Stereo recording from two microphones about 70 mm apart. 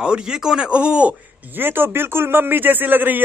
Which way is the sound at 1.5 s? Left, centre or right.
Right.